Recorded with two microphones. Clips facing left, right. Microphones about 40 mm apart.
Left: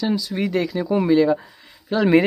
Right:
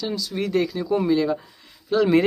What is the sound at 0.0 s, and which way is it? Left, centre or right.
Speech, centre.